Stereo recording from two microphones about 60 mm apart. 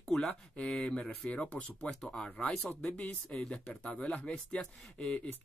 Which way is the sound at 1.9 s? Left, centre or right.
Centre.